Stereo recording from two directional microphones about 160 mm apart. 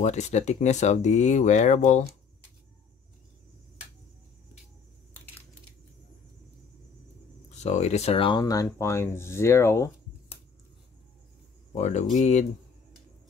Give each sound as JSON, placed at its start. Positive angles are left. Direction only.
{"t": 0.0, "sound": "speech", "side_deg": 45}
{"t": 7.5, "sound": "speech", "side_deg": 45}
{"t": 11.7, "sound": "speech", "side_deg": 45}